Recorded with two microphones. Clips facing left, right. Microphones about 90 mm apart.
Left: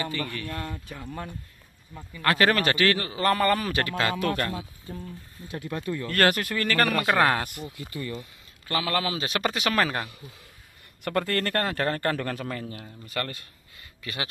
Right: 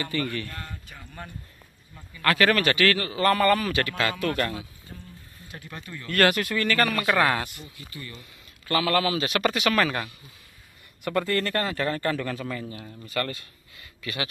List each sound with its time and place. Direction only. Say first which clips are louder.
0.0 s speech: right 2 dB; 15° left (ahead or behind)
2.3 s a man's voice: right 1 dB; 35° left (ahead or behind)
6.0 s a man's voice: right 2 dB; 35° left (ahead or behind)
7.4 s speech: left 5 dB; 60° left (ahead or behind)
8.6 s a man's voice: right 4 dB; 25° left (ahead or behind)
11.1 s a man's voice: right 1 dB; 55° left (ahead or behind)
13.1 s speech: right 3 dB; 40° left (ahead or behind)